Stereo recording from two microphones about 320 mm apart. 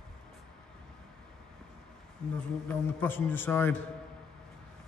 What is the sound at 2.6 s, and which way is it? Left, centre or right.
A man's voice, centre.